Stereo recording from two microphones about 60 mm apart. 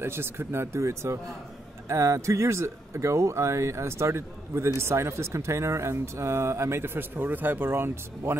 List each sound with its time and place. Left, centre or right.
0.0 s speech: right